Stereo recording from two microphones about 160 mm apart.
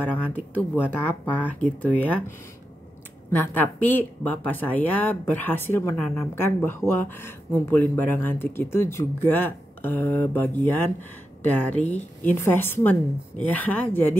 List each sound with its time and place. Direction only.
0.0 s speech: 10° left (ahead or behind)
11.8 s speech: 45° left (ahead or behind)
12.2 s speech: 15° left (ahead or behind)